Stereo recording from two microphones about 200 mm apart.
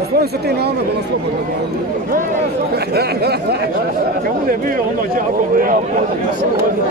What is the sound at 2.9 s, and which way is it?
Speech, 55° right (ahead or behind).